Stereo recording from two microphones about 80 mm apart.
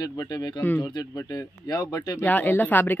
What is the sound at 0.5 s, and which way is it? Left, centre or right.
Speech, left.